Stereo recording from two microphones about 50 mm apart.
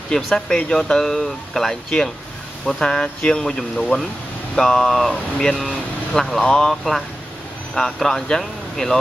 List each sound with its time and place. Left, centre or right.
0.1 s speech: centre
6.7 s speech: centre